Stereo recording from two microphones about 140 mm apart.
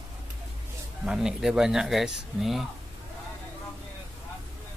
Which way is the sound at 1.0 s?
5° right (ahead or behind).